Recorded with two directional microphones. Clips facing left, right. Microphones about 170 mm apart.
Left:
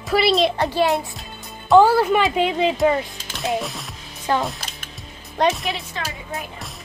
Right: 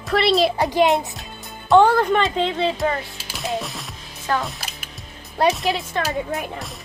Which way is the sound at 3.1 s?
10° right (ahead or behind).